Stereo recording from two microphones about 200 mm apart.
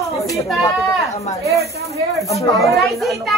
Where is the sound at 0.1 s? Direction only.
Centre (ahead or behind).